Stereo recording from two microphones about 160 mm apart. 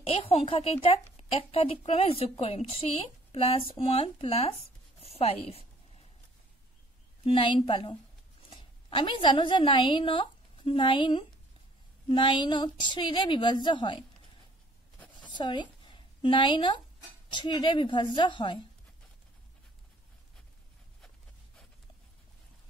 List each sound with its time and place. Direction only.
0.0 s a woman's voice: 40° left (ahead or behind)
7.2 s a woman's voice: 35° left (ahead or behind)
15.2 s a sound: 30° left (ahead or behind)
17.3 s a woman's voice: 30° left (ahead or behind)